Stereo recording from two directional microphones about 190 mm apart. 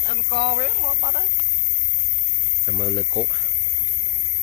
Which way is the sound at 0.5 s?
45° right (ahead or behind).